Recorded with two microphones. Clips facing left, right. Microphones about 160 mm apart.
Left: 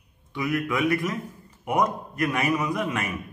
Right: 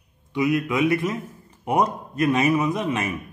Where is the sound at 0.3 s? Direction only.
20° right (ahead or behind).